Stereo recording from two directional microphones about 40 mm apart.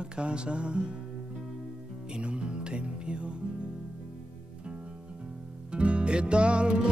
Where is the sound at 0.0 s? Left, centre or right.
Right.